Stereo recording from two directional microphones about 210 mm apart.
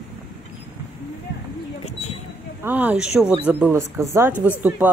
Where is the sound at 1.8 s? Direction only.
30° left (ahead or behind).